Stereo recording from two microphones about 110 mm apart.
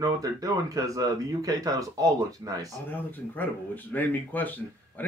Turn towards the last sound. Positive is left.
turn(degrees=15)  # may be behind; listen again after turning